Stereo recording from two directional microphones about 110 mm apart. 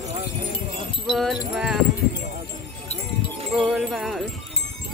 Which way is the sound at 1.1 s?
Centre (ahead or behind).